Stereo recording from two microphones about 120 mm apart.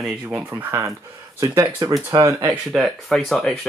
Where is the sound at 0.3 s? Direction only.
15° right (ahead or behind).